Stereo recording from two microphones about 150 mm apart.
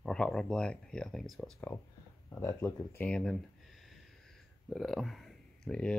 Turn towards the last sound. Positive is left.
turn(degrees=5)  # may be behind; listen again after turning